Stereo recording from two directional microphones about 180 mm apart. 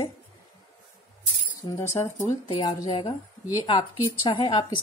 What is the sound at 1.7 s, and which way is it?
Speech, 15° left (ahead or behind).